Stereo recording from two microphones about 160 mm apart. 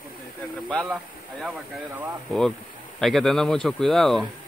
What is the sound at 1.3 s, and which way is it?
Speech, centre (ahead or behind).